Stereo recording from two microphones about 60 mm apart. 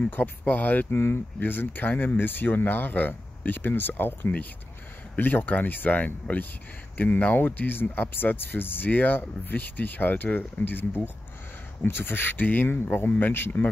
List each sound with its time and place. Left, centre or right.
0.1 s speech: left
0.9 s speech: left